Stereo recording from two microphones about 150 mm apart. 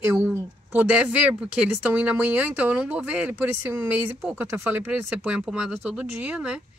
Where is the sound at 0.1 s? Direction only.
15° right (ahead or behind).